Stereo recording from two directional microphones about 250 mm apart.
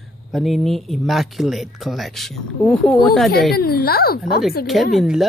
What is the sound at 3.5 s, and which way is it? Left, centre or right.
Speech, left.